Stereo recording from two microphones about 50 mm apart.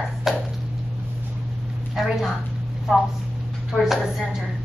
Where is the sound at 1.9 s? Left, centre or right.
Centre.